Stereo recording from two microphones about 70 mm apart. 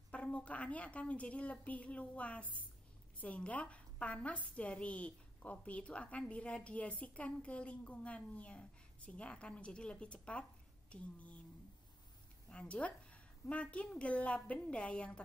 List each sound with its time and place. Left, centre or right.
0.1 s a woman's voice: centre
12.4 s a woman's voice: centre